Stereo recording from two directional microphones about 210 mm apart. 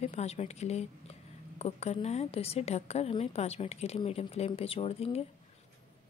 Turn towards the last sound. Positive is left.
turn(degrees=30)  # may be behind; listen again after turning